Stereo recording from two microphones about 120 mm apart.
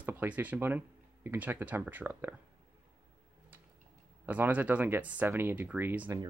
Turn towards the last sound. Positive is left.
turn(degrees=-15)  # may be behind; listen again after turning